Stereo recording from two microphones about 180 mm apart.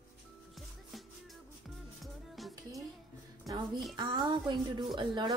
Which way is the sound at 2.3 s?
Centre (ahead or behind).